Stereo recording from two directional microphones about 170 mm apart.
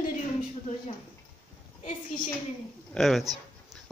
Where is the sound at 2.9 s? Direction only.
Centre (ahead or behind).